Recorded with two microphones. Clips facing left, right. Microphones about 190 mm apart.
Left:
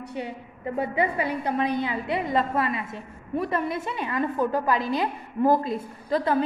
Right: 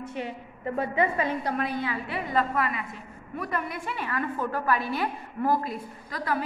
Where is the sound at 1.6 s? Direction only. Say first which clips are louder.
Left 4 dB; 20° left (ahead or behind).